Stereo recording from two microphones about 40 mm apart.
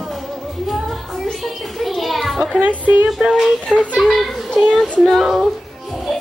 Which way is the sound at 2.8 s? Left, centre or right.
Right.